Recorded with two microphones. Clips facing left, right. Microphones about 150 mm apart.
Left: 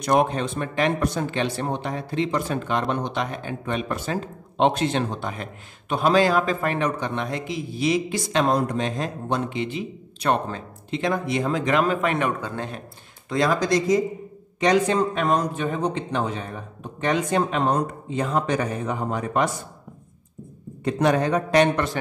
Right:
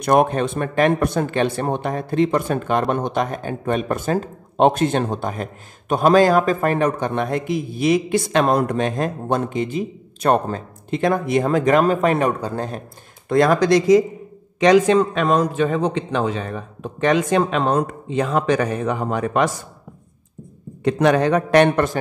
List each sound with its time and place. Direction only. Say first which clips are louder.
0.0 s speech: right 4 dB; 55° right (ahead or behind)
13.3 s a man's voice: right 6 dB; 55° right (ahead or behind); by 14.0 s 75° right (ahead or behind)
14.6 s speech: right 6 dB; 90° right
20.8 s a man's voice: right 4 dB; 80° right; by 21.9 s 55° right (ahead or behind)